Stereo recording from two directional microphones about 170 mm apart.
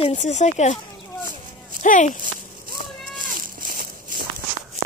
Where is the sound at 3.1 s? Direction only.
55° right (ahead or behind).